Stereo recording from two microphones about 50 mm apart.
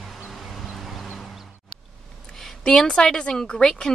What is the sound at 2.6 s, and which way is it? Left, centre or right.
A woman's voice, centre.